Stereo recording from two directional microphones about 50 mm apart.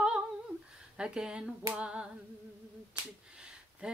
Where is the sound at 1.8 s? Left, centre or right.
Right.